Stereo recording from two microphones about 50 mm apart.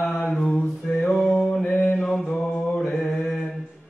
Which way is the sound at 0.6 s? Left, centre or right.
Left.